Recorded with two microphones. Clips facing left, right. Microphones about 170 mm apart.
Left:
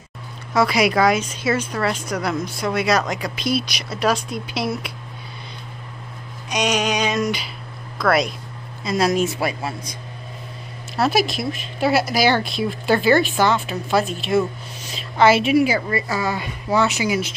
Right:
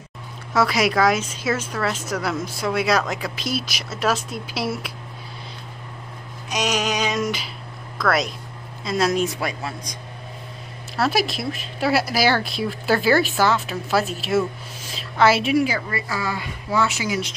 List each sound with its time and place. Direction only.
0.5 s speech: centre (ahead or behind)
6.5 s speech: 5° right (ahead or behind)
11.1 s speech: centre (ahead or behind)
15.7 s a woman's voice: 25° left (ahead or behind)